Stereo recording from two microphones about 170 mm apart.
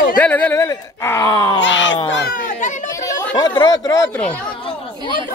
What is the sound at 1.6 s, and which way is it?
Speech, 90° left.